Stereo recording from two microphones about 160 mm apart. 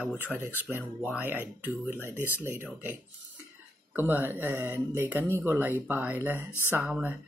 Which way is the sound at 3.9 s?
10° right (ahead or behind).